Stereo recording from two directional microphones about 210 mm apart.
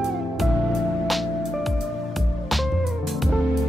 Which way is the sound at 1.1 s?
Centre (ahead or behind).